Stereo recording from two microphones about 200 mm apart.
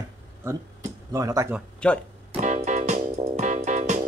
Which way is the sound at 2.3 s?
35° right (ahead or behind).